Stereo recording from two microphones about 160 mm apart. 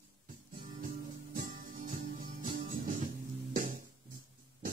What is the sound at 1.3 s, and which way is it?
Music, 60° right (ahead or behind).